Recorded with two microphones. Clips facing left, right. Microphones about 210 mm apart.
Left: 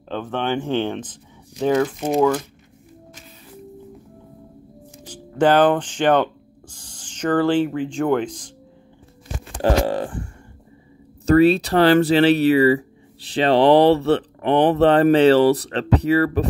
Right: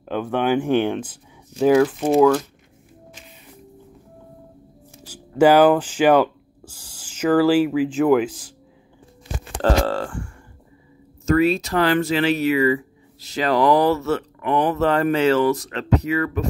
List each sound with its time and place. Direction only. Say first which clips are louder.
0.1 s speech: right 3 dB; 10° right (ahead or behind)
5.0 s speech: right 3 dB; 10° right (ahead or behind)
9.6 s speech: left 1 dB; 15° left (ahead or behind)
11.2 s speech: left 4 dB; 35° left (ahead or behind)